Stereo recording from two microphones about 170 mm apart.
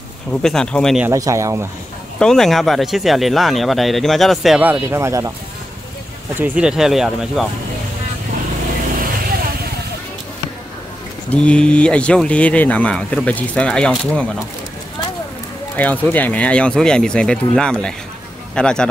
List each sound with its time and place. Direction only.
0.3 s speech: 5° left (ahead or behind)
1.0 s speech: 20° right (ahead or behind)
2.1 s speech: 5° left (ahead or behind); by 5.3 s 15° right (ahead or behind)
6.3 s speech: 10° right (ahead or behind)
11.2 s speech: 5° left (ahead or behind)
15.7 s speech: 10° left (ahead or behind)